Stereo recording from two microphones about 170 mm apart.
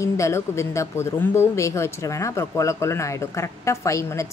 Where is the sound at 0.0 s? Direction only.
15° left (ahead or behind).